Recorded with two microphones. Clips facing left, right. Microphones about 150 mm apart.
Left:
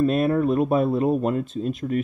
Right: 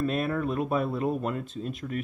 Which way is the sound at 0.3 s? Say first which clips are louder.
Left 7 dB; 30° left (ahead or behind).